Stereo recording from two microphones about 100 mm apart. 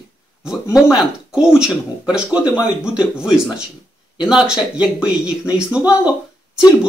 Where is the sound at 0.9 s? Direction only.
5° right (ahead or behind).